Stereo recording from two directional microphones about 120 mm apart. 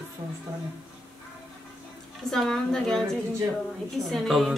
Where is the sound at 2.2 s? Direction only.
5° left (ahead or behind).